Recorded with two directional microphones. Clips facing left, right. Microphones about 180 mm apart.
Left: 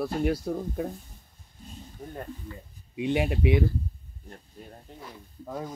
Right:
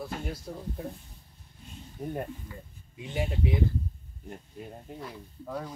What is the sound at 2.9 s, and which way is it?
Speech, 70° left (ahead or behind).